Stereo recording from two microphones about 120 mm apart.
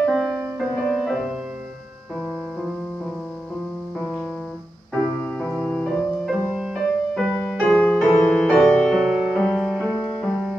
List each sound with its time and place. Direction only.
0.0 s music: centre (ahead or behind)
4.9 s music: 15° left (ahead or behind)
6.5 s music: 5° right (ahead or behind)
7.6 s music: 10° left (ahead or behind)
8.9 s music: 5° right (ahead or behind)